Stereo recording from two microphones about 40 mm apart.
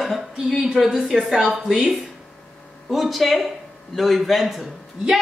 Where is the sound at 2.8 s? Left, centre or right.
Centre.